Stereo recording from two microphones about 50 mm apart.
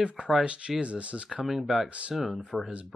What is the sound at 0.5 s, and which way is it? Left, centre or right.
Speech, right.